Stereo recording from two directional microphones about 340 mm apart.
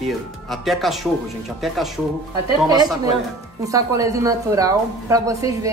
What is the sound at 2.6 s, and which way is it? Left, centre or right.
A woman's voice, centre.